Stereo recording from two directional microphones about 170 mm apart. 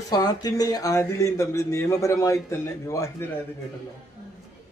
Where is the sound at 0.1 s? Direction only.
25° left (ahead or behind).